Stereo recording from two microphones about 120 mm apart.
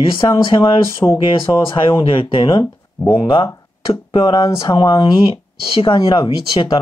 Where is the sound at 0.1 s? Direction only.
40° left (ahead or behind).